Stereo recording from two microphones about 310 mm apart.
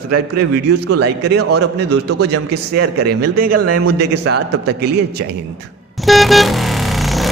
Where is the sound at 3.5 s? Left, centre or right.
Right.